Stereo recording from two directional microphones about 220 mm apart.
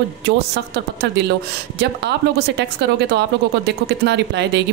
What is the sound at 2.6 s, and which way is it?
Speech, 50° right (ahead or behind).